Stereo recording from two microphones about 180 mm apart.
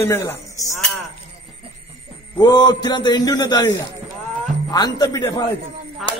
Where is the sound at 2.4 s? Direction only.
20° left (ahead or behind).